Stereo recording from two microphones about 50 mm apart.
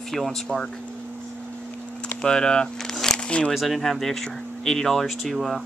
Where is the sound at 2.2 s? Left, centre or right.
Centre.